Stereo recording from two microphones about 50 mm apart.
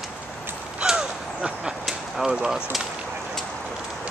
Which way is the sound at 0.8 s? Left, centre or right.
Centre.